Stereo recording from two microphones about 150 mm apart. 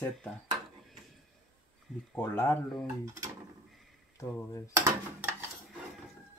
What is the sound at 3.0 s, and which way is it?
Speech, 20° right (ahead or behind).